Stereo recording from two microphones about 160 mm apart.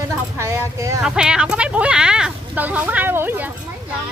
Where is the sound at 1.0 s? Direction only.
5° right (ahead or behind).